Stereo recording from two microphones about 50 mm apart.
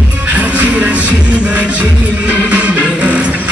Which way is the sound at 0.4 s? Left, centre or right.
Right.